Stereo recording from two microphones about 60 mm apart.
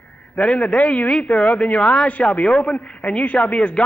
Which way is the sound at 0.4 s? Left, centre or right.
Centre.